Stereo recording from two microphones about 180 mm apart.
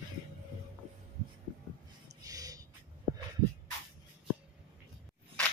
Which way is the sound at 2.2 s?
20° right (ahead or behind).